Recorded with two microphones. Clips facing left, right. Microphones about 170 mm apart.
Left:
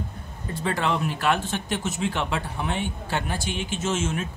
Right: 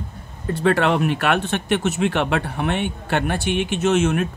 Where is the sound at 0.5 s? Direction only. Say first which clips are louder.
Right 8 dB; 65° right (ahead or behind).